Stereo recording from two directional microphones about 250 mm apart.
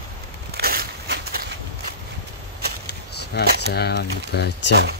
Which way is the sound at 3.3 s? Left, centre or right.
Left.